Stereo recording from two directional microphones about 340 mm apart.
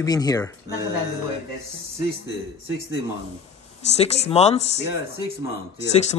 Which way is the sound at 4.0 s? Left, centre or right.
Centre.